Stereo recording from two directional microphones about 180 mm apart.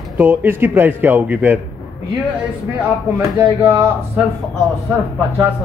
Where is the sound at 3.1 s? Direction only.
10° right (ahead or behind).